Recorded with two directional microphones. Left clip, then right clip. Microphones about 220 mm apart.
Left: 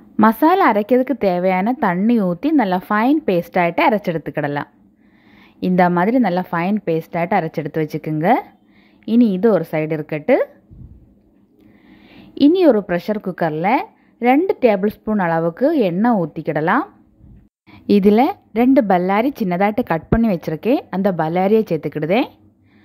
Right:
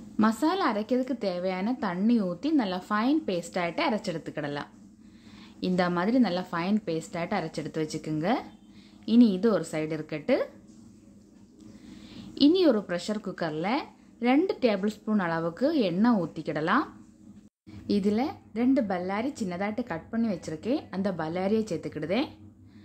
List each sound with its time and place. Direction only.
0.2 s a woman's voice: 30° left (ahead or behind)
11.9 s a woman's voice: 25° left (ahead or behind)